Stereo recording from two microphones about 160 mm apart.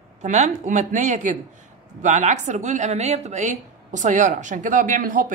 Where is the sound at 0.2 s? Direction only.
45° right (ahead or behind).